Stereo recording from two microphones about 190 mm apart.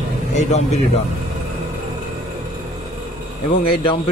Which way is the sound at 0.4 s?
35° left (ahead or behind).